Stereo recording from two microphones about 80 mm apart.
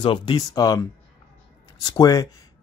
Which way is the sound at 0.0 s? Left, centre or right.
Left.